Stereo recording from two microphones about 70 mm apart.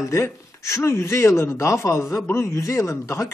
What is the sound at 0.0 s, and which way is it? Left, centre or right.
A man's voice, left.